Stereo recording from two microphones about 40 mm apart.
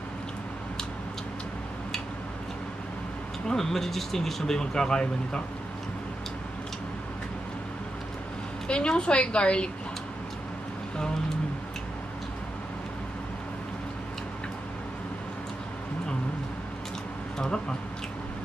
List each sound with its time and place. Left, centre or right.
3.4 s speech: centre
8.6 s a woman's voice: left
17.4 s speech: left